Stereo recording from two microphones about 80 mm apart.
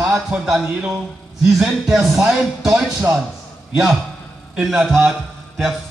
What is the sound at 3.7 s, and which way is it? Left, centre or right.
A man's voice, centre.